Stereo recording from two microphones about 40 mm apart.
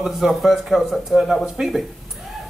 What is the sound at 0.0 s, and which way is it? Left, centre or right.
A woman's voice, centre.